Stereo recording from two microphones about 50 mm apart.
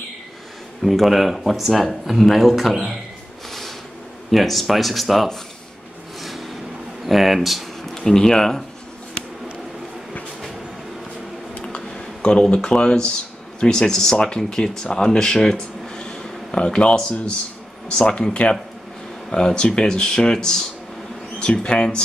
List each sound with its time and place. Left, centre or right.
0.8 s speech: centre
4.3 s speech: centre
6.2 s vehicle: centre
7.1 s speech: centre
7.9 s speech: centre
11.6 s a sound: centre
13.6 s speech: centre